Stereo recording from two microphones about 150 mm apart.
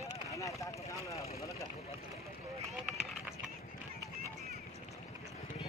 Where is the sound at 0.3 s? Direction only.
20° left (ahead or behind).